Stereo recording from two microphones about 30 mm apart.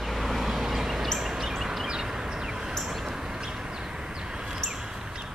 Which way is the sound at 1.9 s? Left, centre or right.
Right.